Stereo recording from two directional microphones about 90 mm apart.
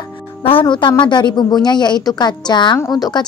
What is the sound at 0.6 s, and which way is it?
A woman's voice, 60° left (ahead or behind).